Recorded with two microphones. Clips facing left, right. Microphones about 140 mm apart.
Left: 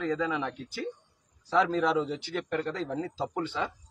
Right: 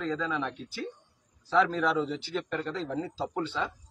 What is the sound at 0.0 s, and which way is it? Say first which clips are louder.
Speech: left 2 dB; 15° left (ahead or behind).